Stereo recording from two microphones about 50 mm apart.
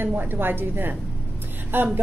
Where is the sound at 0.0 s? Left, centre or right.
Right.